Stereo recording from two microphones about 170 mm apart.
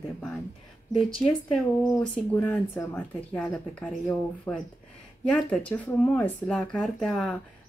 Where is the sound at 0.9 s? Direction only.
Centre (ahead or behind).